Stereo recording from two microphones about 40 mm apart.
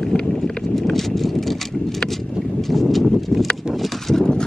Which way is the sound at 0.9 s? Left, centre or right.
Centre.